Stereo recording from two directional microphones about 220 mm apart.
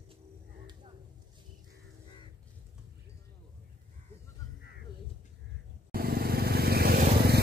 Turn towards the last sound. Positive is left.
turn(degrees=-45)  # may be behind; listen again after turning